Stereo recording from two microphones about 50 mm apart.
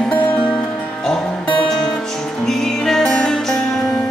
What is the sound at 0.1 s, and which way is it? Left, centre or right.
Music, left.